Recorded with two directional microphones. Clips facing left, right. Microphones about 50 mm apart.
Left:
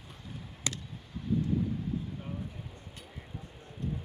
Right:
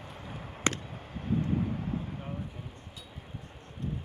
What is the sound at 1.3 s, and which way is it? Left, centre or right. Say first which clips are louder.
Vehicle: even; right.